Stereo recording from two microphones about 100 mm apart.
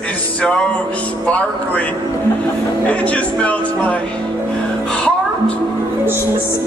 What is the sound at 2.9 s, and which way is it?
Speech, 15° left (ahead or behind).